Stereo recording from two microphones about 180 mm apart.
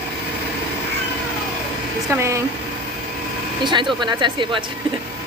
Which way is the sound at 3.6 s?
25° right (ahead or behind).